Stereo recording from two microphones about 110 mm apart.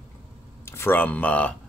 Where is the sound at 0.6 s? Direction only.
20° left (ahead or behind).